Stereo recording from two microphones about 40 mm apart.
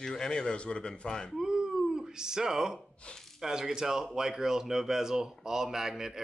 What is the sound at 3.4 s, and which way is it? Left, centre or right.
Speech, centre.